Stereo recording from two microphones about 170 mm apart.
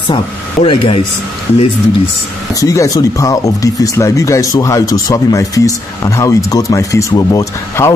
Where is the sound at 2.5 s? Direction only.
20° left (ahead or behind).